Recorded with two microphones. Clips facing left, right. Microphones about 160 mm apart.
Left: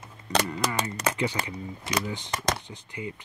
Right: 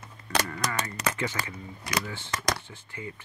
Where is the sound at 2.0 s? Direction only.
15° left (ahead or behind).